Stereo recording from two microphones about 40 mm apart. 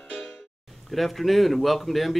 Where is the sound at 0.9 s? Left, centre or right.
Centre.